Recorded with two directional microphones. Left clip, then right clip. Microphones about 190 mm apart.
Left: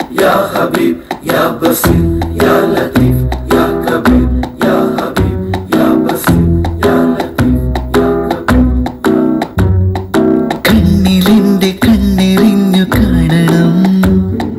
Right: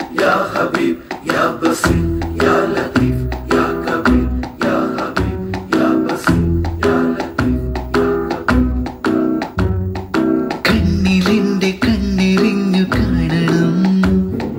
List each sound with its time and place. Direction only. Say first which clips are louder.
0.1 s a sound: left 5 dB; 30° left (ahead or behind)
3.4 s music: left 5 dB; 25° left (ahead or behind)
10.1 s music: left 5 dB; 25° left (ahead or behind)